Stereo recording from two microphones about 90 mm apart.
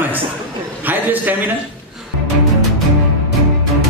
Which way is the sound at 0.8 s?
20° right (ahead or behind).